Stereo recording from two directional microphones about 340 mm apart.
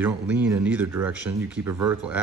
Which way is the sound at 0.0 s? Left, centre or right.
Centre.